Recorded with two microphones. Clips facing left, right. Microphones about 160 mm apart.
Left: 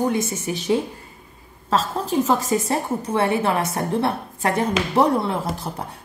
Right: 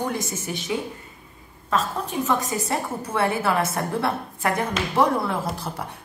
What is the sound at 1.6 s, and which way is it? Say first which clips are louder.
A woman's voice: left 3 dB; 30° left (ahead or behind).